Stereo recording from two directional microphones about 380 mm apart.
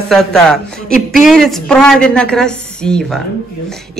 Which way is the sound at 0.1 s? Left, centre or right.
Centre.